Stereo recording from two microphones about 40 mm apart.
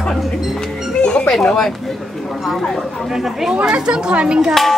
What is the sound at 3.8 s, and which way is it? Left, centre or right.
Speech, right.